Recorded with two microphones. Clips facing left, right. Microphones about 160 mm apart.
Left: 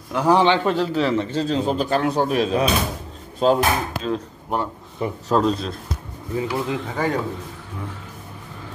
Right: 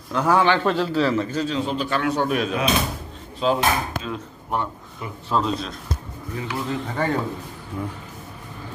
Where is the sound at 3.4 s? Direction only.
45° left (ahead or behind).